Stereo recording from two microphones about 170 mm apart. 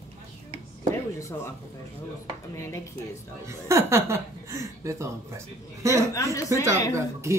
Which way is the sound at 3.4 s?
15° right (ahead or behind).